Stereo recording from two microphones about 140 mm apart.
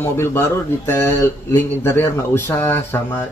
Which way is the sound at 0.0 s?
20° left (ahead or behind).